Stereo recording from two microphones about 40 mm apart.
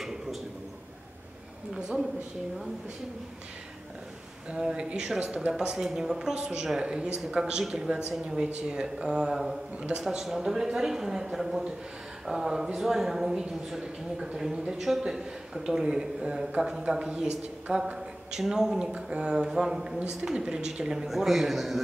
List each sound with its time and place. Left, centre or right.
1.7 s speech: centre
4.5 s a woman's voice: right
5.2 s speech: right
5.5 s a woman's voice: centre
10.2 s a woman's voice: centre; by 17.8 s right
18.5 s a woman's voice: centre
20.9 s a man's voice: centre